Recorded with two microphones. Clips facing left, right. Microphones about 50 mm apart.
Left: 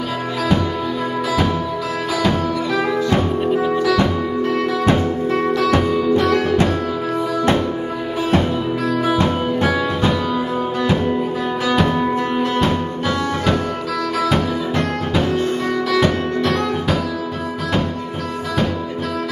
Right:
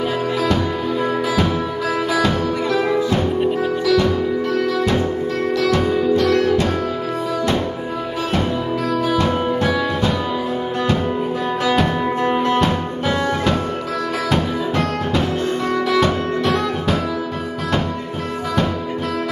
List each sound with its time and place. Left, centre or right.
5.6 s music: left
9.0 s music: centre
11.6 s music: centre
11.9 s music: centre
16.1 s music: centre